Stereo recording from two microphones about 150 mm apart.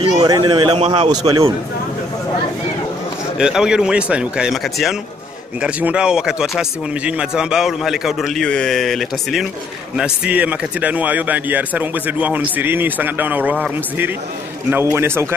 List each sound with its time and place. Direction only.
0.1 s a man's voice: 25° right (ahead or behind)
3.3 s a man's voice: 5° right (ahead or behind)